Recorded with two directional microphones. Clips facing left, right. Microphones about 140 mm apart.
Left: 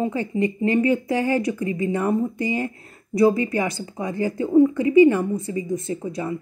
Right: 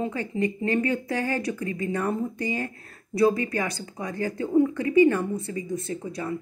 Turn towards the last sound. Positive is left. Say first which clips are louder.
# left 4 dB
turn(degrees=20)  # may be behind; listen again after turning